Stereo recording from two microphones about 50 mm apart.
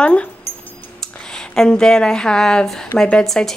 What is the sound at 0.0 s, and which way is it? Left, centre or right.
Speech, left.